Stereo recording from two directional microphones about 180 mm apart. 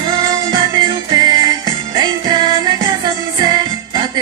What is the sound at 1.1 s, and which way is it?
Music, 20° right (ahead or behind).